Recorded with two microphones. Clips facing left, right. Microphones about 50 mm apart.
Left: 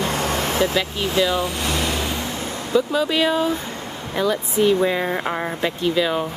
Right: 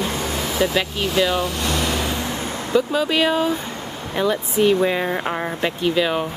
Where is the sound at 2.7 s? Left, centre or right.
Centre.